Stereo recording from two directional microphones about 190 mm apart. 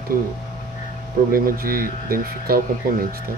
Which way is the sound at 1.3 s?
50° right (ahead or behind).